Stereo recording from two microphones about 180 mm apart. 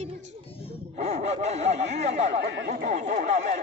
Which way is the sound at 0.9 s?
35° right (ahead or behind).